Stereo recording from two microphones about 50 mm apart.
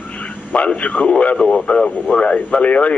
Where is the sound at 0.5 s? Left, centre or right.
Left.